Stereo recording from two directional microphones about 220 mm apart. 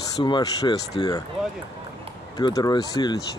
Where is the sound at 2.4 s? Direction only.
20° left (ahead or behind).